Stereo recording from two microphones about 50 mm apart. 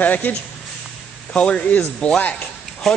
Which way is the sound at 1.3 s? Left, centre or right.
Left.